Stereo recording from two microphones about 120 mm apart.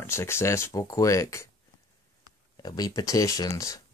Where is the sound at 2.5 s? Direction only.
35° left (ahead or behind).